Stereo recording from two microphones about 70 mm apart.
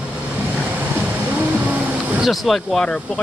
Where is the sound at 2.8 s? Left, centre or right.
Centre.